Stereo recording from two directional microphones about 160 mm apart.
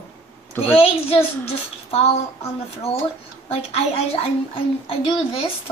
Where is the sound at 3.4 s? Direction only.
40° left (ahead or behind).